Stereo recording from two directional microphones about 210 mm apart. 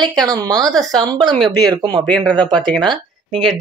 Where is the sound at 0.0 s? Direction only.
20° right (ahead or behind).